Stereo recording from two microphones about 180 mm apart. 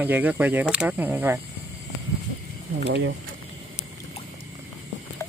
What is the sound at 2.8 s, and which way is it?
Speech, 70° right (ahead or behind).